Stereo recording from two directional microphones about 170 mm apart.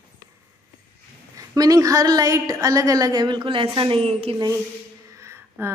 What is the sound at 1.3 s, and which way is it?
A woman's voice, 20° right (ahead or behind).